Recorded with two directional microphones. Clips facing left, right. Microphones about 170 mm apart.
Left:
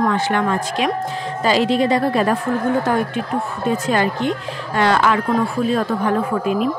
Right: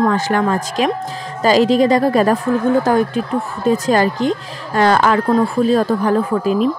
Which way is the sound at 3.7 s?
40° right (ahead or behind).